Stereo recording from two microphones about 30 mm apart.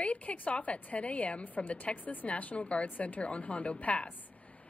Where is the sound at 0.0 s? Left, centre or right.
Left.